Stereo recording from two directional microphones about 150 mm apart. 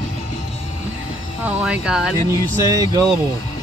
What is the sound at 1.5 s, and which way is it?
Speech, 5° right (ahead or behind).